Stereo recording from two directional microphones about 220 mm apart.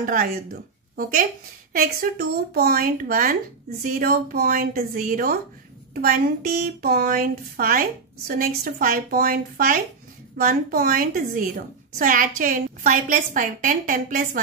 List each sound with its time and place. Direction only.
0.0 s a woman's voice: 40° right (ahead or behind)
1.7 s a woman's voice: 40° right (ahead or behind)